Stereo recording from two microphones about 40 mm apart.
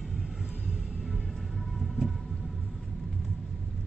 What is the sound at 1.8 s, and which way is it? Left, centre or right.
Vehicle, centre.